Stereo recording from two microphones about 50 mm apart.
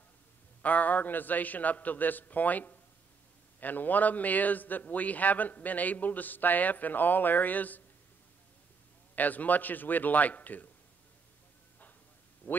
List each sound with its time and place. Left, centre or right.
0.6 s a man's voice: left
9.1 s a man's voice: left
12.4 s a man's voice: left